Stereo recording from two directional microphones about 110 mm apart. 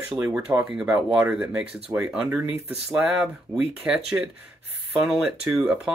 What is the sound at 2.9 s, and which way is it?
Speech, 5° right (ahead or behind).